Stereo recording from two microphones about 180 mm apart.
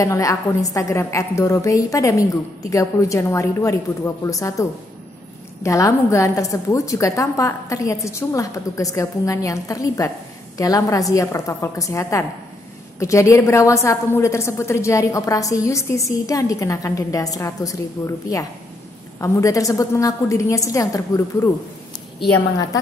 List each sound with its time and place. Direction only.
0.0 s a woman's voice: 20° left (ahead or behind)